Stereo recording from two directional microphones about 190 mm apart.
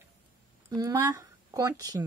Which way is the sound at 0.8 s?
20° right (ahead or behind).